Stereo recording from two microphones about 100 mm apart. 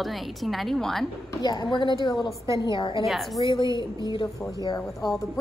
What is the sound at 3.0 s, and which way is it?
Speech, centre (ahead or behind).